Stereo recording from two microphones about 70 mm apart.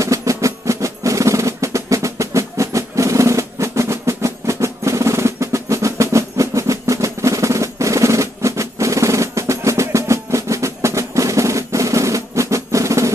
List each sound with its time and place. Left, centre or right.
0.0 s percussion: right